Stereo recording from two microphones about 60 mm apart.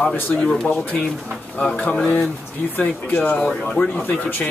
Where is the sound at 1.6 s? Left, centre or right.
Left.